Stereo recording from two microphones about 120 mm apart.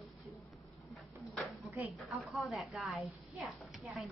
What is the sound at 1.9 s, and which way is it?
Speech, centre (ahead or behind).